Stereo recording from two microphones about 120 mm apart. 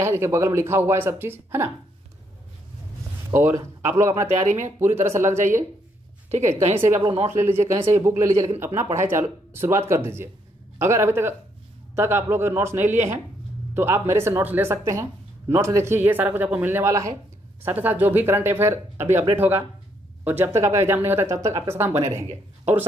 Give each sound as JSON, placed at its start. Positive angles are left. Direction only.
{"t": 0.0, "sound": "speech", "side_deg": -20}
{"t": 3.3, "sound": "speech", "side_deg": -20}
{"t": 4.3, "sound": "speech", "side_deg": -80}
{"t": 4.9, "sound": "speech", "side_deg": -20}
{"t": 6.3, "sound": "a woman's voice", "side_deg": -65}
{"t": 7.0, "sound": "speech", "side_deg": -45}
{"t": 7.2, "sound": "speech", "side_deg": -20}